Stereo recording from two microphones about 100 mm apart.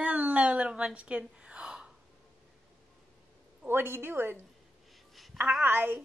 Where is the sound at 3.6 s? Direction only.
20° right (ahead or behind).